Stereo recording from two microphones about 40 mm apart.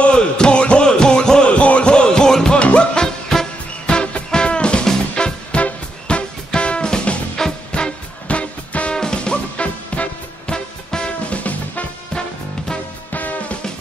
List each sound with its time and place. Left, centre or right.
0.0 s music: left
1.5 s music: left
2.6 s music: left
3.3 s music: centre
3.8 s music: left
8.9 s music: left
11.2 s music: left
13.1 s music: left